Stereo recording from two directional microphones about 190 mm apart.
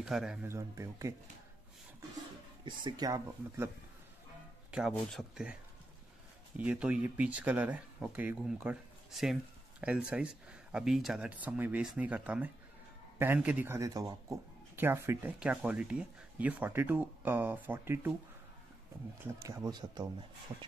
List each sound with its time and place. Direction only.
0.0 s speech: 5° right (ahead or behind)
0.5 s speech: 15° right (ahead or behind)
2.6 s speech: 20° right (ahead or behind)
4.6 s speech: 5° right (ahead or behind)
6.6 s speech: 5° right (ahead or behind)
19.2 s speech: 20° right (ahead or behind)